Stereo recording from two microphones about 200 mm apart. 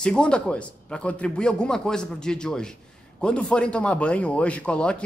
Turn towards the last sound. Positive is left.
turn(degrees=5)  # may be behind; listen again after turning